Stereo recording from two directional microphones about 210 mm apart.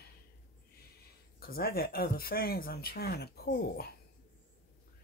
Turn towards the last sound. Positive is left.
turn(degrees=50)  # may be behind; listen again after turning